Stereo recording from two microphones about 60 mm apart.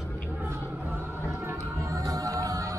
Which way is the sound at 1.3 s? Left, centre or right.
Right.